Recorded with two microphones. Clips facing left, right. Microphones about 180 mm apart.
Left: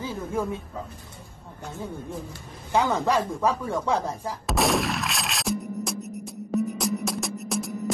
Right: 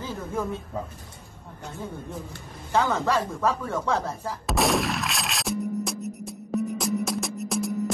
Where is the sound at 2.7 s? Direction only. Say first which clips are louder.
Left 1 dB; 15° left (ahead or behind).